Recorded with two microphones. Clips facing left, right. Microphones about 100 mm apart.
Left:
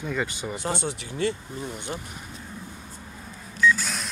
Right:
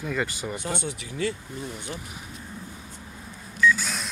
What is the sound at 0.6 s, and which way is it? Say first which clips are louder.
Speech: left 2 dB; 30° left (ahead or behind).